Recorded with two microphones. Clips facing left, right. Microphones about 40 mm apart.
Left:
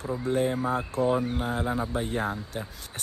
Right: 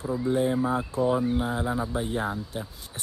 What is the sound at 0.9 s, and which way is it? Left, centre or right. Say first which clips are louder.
Speech: even; left.